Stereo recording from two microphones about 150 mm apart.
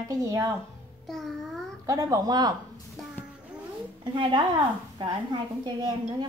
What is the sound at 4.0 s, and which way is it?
Speech, 35° right (ahead or behind).